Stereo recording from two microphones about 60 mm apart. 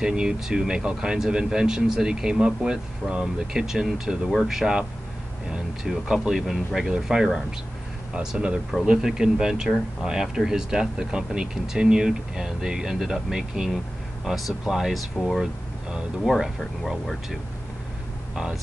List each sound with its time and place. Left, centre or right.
0.0 s speech: centre
16.3 s speech: centre